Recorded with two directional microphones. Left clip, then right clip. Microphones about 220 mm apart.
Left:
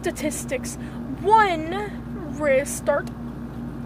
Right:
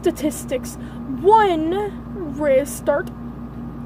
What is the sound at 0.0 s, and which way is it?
A woman's voice, 15° right (ahead or behind).